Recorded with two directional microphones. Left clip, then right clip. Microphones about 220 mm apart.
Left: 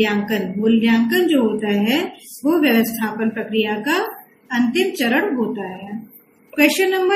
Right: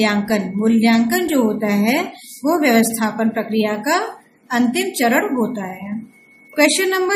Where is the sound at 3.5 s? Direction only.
50° right (ahead or behind).